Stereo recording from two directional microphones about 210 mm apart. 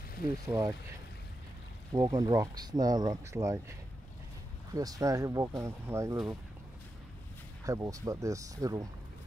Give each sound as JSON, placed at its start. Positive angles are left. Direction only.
{"t": 0.5, "sound": "speech", "side_deg": -15}
{"t": 1.9, "sound": "speech", "side_deg": -15}
{"t": 4.7, "sound": "speech", "side_deg": -15}
{"t": 7.6, "sound": "speech", "side_deg": -15}